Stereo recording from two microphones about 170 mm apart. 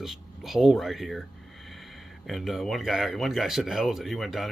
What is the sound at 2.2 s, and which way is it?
Speech, centre (ahead or behind).